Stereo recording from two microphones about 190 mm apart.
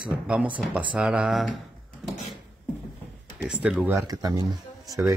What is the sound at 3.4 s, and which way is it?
Speech, 5° right (ahead or behind).